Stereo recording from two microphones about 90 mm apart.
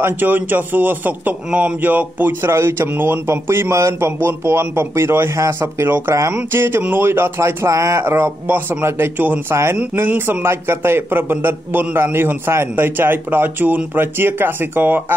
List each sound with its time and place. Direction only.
0.0 s a man's voice: 20° right (ahead or behind)